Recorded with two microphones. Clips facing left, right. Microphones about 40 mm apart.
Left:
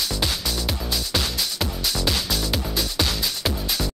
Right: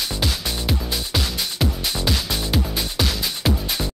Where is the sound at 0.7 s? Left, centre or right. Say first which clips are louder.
Right 2 dB; centre.